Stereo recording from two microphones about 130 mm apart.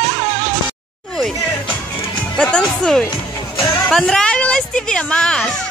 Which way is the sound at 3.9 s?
5° left (ahead or behind).